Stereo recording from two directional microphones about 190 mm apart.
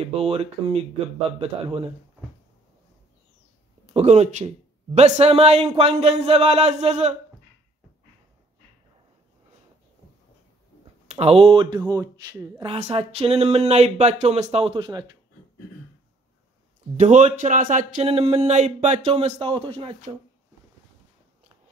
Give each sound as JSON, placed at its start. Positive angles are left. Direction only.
{"t": 0.0, "sound": "speech", "side_deg": -30}
{"t": 3.8, "sound": "speech", "side_deg": -35}
{"t": 11.1, "sound": "speech", "side_deg": -35}
{"t": 12.7, "sound": "speech", "side_deg": -35}
{"t": 17.0, "sound": "speech", "side_deg": -40}